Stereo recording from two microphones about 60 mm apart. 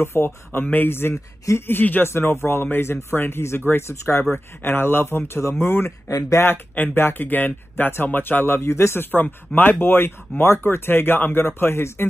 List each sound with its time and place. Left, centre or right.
0.0 s speech: left
2.0 s speech: left
4.2 s speech: left
6.4 s speech: left
6.7 s speech: left
9.6 s speech: left